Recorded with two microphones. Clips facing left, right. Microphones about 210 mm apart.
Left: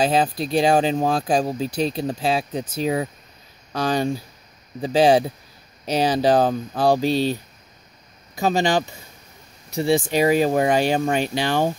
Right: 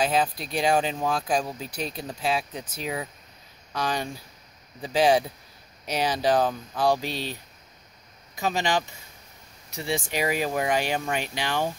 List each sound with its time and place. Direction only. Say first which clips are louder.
0.0 s speech: left 5 dB; 30° left (ahead or behind)
8.4 s speech: left 6 dB; 35° left (ahead or behind)